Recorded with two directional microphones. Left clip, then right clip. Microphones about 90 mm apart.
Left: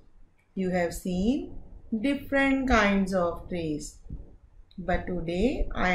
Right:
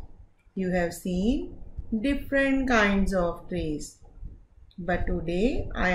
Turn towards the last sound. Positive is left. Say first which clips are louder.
# right 1 dB
turn(degrees=-65)  # may be behind; listen again after turning